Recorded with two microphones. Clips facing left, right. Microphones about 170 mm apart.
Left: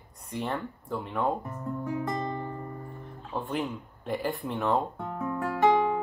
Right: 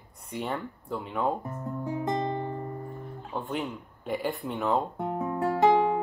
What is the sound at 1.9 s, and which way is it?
Music, 25° right (ahead or behind).